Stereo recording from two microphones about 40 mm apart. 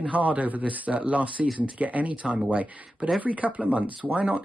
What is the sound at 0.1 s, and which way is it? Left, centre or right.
Speech, right.